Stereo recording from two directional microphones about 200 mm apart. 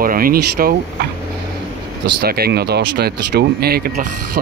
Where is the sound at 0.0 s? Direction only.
45° right (ahead or behind).